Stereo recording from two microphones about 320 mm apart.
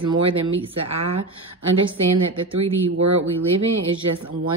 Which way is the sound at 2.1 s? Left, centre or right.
Right.